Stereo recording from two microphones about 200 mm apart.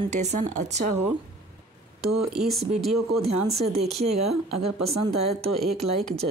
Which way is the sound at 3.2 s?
30° right (ahead or behind).